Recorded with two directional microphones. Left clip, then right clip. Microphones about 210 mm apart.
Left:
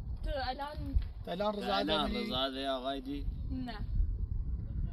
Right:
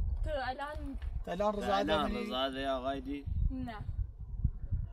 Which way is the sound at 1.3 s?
20° right (ahead or behind).